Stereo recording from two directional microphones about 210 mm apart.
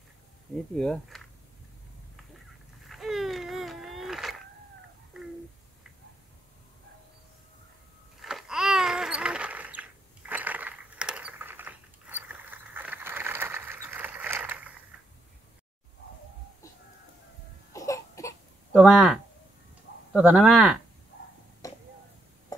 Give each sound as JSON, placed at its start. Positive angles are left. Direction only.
{"t": 0.7, "sound": "speech", "side_deg": 5}
{"t": 2.9, "sound": "a sound", "side_deg": 0}
{"t": 8.2, "sound": "babbling", "side_deg": 0}
{"t": 17.7, "sound": "baby cry", "side_deg": 15}
{"t": 18.8, "sound": "speech", "side_deg": 0}
{"t": 21.6, "sound": "tick-tock", "side_deg": 15}
{"t": 22.5, "sound": "a sound", "side_deg": 15}